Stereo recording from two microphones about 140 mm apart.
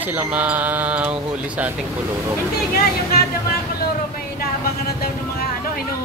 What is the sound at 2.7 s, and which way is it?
Speech, 90° left.